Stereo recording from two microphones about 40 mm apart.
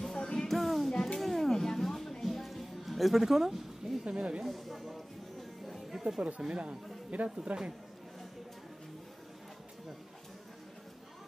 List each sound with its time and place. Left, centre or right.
0.0 s music: centre
0.5 s music: centre
4.0 s speech: right
4.5 s speech: centre
5.7 s music: centre
6.2 s a man's voice: right